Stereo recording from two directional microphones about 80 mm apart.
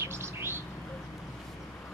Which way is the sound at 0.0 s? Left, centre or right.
Right.